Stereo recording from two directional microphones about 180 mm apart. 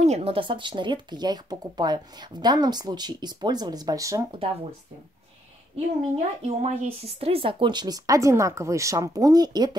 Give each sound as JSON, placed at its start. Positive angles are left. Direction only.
{"t": 0.0, "sound": "speech", "side_deg": -35}
{"t": 4.3, "sound": "speech", "side_deg": -30}
{"t": 6.1, "sound": "speech", "side_deg": -40}